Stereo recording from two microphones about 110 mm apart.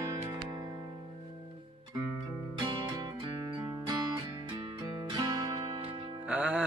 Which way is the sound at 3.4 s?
45° right (ahead or behind).